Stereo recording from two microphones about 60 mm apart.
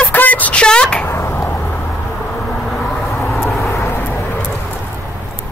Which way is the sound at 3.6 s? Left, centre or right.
Left.